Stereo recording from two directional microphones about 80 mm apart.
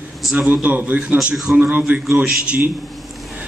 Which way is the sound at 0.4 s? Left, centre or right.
Centre.